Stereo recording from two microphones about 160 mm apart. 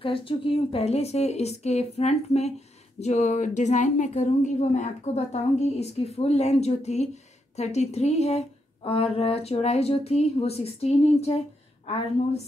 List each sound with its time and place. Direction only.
0.0 s a woman's voice: 35° left (ahead or behind)